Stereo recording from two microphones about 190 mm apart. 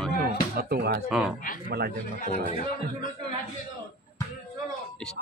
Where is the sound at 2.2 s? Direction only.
40° left (ahead or behind).